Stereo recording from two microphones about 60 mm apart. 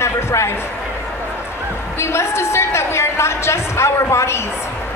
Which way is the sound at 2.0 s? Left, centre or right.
Left.